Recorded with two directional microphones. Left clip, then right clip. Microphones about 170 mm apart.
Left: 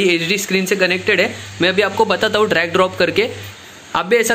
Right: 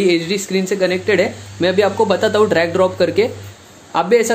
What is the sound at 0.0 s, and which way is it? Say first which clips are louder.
A man's voice: even; 5° right (ahead or behind).